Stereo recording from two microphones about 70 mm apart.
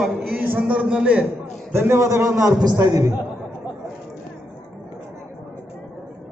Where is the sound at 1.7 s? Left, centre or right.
Right.